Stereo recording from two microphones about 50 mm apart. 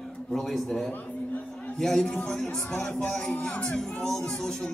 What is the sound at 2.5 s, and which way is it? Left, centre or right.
Speech, centre.